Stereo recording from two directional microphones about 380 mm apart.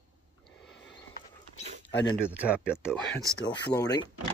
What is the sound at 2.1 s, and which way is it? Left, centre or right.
Speech, centre.